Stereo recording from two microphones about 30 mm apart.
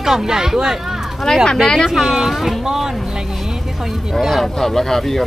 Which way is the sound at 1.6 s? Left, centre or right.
Centre.